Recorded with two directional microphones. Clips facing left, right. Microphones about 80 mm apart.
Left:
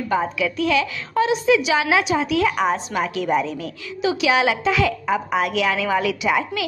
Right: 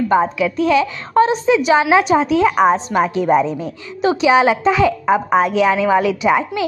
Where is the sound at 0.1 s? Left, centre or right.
Right.